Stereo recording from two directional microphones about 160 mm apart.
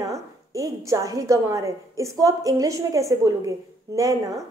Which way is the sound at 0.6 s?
20° right (ahead or behind).